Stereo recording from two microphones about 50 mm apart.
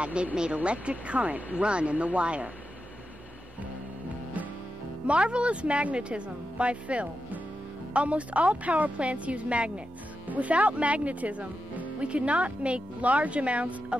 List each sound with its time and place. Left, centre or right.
0.0 s speech: right
5.0 s speech: right